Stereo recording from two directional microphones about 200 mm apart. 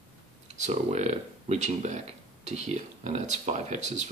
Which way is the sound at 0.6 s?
35° right (ahead or behind).